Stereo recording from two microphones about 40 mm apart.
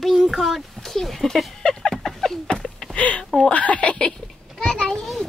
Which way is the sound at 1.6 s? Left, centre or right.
Centre.